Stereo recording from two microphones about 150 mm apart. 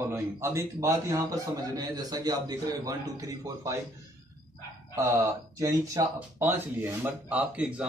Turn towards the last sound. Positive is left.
turn(degrees=-10)  # may be behind; listen again after turning